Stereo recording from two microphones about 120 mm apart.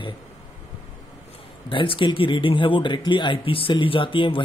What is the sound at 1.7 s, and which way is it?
Speech, 45° left (ahead or behind).